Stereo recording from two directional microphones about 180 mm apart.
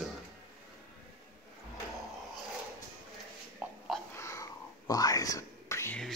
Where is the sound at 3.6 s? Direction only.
5° right (ahead or behind).